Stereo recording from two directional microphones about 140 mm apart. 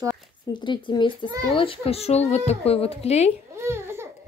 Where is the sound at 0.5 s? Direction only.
35° left (ahead or behind).